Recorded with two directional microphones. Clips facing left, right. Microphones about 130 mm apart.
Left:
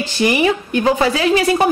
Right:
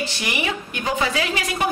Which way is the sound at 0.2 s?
35° left (ahead or behind).